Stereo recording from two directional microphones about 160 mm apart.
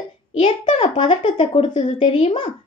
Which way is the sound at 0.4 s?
45° left (ahead or behind).